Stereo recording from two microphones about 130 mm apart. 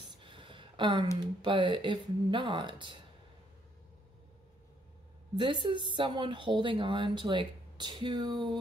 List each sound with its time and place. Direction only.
0.2 s a sound: 40° right (ahead or behind)
1.4 s speech: 40° right (ahead or behind)
5.3 s speech: 35° right (ahead or behind)